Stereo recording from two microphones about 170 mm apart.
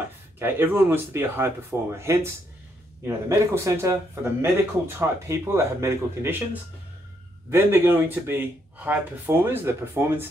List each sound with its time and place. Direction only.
0.4 s speech: 10° right (ahead or behind)
7.5 s speech: 15° right (ahead or behind)